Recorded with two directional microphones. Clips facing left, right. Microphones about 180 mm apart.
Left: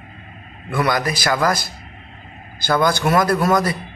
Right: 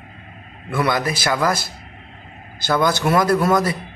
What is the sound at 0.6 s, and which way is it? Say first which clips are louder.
A man's voice: even; 25° right (ahead or behind).